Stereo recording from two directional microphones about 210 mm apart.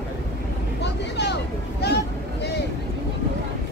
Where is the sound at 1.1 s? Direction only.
55° left (ahead or behind).